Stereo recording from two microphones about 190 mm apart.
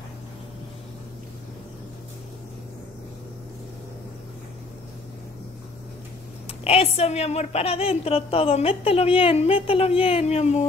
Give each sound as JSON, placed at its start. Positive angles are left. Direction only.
{"t": 6.6, "sound": "a woman's voice", "side_deg": 30}